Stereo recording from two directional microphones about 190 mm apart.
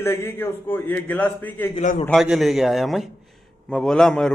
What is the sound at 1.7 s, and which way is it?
Speech, 45° left (ahead or behind).